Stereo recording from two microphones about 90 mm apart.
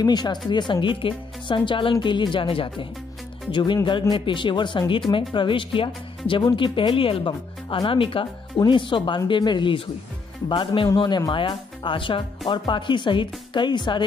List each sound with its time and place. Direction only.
0.0 s speech: 50° left (ahead or behind); by 2.9 s 75° left (ahead or behind)
3.5 s speech: 60° left (ahead or behind); by 8.3 s 80° left
8.6 s speech: 65° left (ahead or behind)
11.0 s speech: 55° left (ahead or behind)